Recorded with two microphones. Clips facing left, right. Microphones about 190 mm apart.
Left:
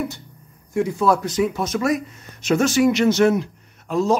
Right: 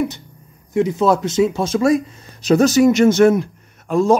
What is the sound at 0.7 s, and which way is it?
A man's voice, 20° right (ahead or behind).